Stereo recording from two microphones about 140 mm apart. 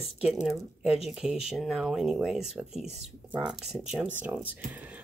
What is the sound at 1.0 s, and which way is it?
Speech, 5° right (ahead or behind).